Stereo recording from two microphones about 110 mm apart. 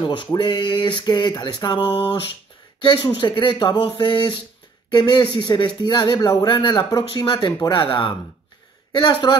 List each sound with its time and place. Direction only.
0.0 s speech: 45° left (ahead or behind)